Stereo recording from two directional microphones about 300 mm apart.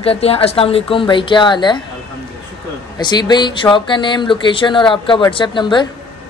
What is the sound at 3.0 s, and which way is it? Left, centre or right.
Speech, centre.